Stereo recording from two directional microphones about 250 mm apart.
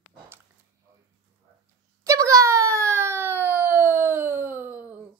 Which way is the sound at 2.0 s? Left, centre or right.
Centre.